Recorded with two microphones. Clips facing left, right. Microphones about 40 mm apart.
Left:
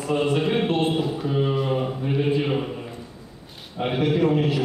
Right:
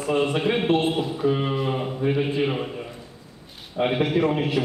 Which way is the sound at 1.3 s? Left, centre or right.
Centre.